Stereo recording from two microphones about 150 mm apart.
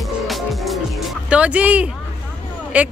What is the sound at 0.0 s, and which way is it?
Music, centre (ahead or behind).